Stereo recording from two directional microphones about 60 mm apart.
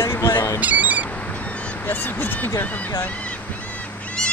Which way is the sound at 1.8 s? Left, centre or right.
Left.